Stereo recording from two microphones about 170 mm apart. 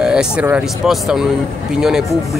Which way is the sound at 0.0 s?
5° right (ahead or behind).